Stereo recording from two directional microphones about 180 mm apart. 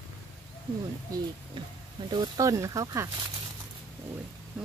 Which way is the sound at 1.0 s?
20° right (ahead or behind).